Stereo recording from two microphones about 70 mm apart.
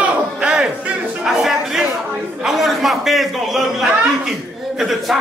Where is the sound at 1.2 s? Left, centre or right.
Centre.